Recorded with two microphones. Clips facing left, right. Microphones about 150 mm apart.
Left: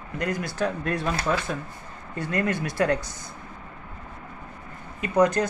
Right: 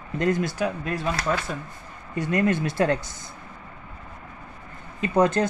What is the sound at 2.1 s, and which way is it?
Speech, 20° right (ahead or behind).